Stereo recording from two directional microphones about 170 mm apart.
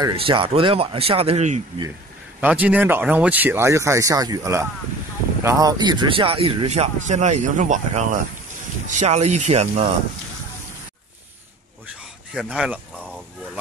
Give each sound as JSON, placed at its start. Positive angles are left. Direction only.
{"t": 0.1, "sound": "speech", "side_deg": -30}
{"t": 2.4, "sound": "speech", "side_deg": -10}
{"t": 12.4, "sound": "speech", "side_deg": 0}